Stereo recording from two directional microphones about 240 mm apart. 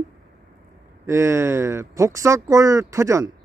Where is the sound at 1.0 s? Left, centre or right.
Centre.